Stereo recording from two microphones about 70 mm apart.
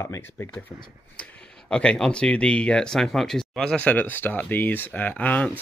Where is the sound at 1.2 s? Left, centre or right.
Centre.